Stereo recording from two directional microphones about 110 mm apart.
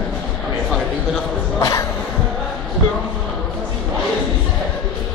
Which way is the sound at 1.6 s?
30° left (ahead or behind).